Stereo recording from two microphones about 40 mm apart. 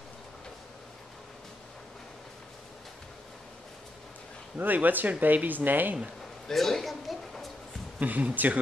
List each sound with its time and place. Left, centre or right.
4.6 s speech: right
6.4 s a man's voice: centre
8.0 s speech: right